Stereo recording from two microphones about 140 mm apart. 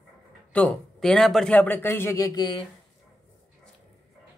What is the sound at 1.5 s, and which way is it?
Speech, 10° left (ahead or behind).